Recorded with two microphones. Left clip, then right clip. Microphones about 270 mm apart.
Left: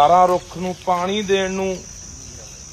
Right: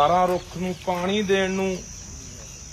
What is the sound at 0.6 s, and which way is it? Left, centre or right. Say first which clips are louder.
Speech: left 6 dB; centre.